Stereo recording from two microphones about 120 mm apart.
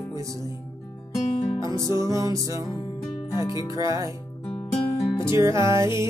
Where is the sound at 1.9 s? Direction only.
25° right (ahead or behind).